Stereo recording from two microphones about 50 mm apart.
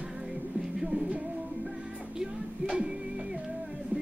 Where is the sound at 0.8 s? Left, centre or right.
Centre.